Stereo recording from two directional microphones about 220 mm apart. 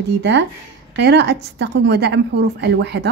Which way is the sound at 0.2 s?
50° right (ahead or behind).